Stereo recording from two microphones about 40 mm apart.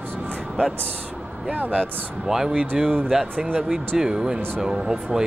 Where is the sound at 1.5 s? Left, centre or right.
Right.